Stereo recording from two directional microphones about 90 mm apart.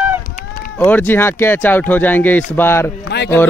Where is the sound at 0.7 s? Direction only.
20° left (ahead or behind).